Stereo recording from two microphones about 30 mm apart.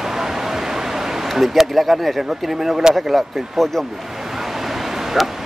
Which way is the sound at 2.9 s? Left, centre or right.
Centre.